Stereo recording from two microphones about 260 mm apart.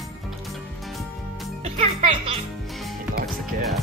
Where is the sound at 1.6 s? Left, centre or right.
Right.